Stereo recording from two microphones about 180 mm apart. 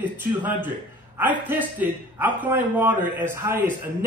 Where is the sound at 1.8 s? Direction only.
10° right (ahead or behind).